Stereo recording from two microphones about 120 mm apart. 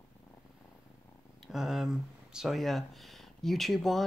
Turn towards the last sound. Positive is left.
turn(degrees=0)  # may be behind; listen again after turning